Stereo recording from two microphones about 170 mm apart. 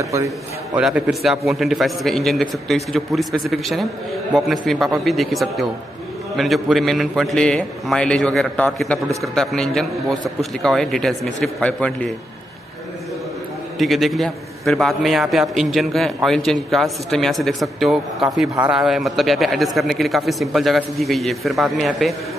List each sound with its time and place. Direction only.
0.0 s a man's voice: 20° right (ahead or behind)
0.7 s a man's voice: 5° right (ahead or behind)
13.7 s a man's voice: centre (ahead or behind)